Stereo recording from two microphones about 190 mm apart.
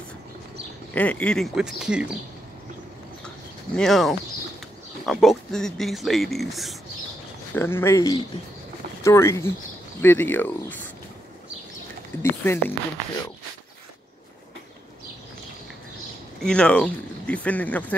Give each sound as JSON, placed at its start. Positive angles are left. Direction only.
{"t": 0.9, "sound": "speech", "side_deg": 5}
{"t": 3.7, "sound": "speech", "side_deg": 0}
{"t": 7.5, "sound": "speech", "side_deg": 10}
{"t": 12.2, "sound": "speech", "side_deg": 10}
{"t": 16.4, "sound": "speech", "side_deg": 5}